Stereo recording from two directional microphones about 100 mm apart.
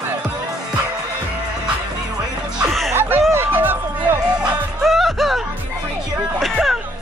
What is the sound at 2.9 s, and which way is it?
Music, 25° right (ahead or behind).